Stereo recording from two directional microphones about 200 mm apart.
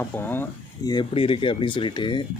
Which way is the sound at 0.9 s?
25° left (ahead or behind).